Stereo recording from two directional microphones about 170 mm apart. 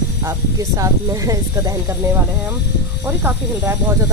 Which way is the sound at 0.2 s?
20° right (ahead or behind).